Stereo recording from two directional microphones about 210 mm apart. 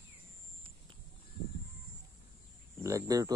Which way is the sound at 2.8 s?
15° right (ahead or behind).